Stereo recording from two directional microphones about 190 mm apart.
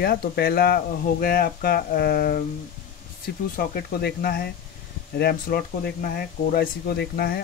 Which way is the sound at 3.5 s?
50° left (ahead or behind).